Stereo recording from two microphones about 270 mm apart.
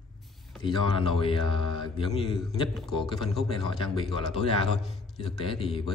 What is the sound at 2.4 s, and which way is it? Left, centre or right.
A man's voice, centre.